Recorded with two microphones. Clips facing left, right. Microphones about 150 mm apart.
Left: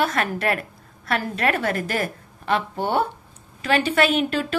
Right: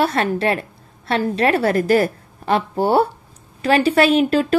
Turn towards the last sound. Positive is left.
turn(degrees=-40)  # may be behind; listen again after turning